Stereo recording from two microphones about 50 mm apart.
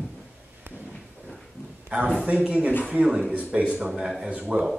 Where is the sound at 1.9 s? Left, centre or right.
Right.